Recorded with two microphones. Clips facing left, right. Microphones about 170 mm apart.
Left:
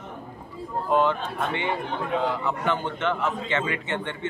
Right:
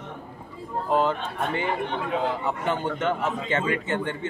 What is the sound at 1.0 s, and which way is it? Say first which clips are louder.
A man's voice: left 1 dB; 40° right (ahead or behind).